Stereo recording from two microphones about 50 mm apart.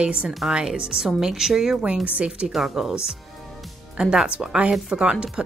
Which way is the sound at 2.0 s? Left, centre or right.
Right.